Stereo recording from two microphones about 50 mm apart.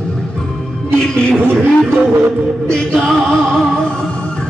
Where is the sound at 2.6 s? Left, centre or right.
Centre.